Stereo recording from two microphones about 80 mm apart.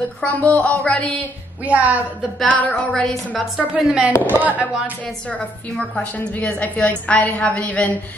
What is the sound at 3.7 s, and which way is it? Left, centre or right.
Speech, centre.